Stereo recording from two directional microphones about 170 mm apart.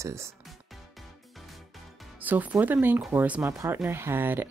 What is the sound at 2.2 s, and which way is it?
Speech, 10° right (ahead or behind).